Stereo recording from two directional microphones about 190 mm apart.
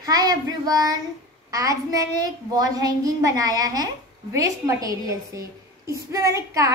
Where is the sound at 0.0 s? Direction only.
20° right (ahead or behind).